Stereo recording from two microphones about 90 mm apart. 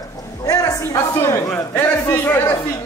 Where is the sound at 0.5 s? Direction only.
40° left (ahead or behind).